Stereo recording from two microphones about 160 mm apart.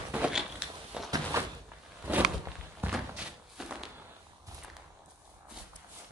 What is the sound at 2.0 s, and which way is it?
Walk, 10° right (ahead or behind).